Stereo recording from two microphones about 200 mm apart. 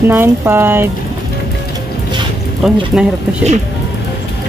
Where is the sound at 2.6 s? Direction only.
Centre (ahead or behind).